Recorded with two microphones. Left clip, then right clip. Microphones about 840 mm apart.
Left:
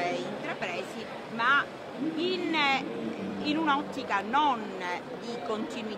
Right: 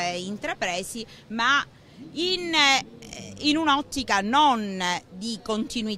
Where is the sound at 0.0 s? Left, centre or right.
Right.